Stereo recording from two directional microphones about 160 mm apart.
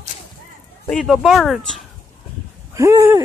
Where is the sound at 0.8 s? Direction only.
Centre (ahead or behind).